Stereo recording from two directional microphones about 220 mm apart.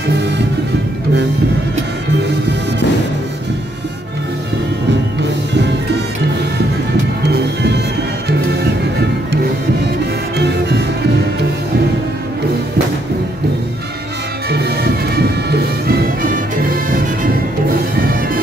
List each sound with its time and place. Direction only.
10.3 s music: 50° right (ahead or behind)
14.5 s music: 45° right (ahead or behind)